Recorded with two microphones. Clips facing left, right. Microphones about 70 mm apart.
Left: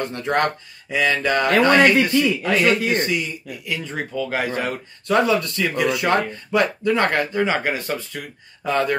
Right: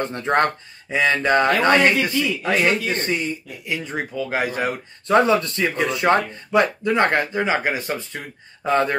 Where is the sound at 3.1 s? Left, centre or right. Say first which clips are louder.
Right 1 dB; right.